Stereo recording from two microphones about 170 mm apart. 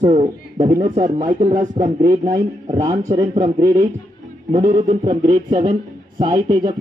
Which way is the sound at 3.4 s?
20° right (ahead or behind).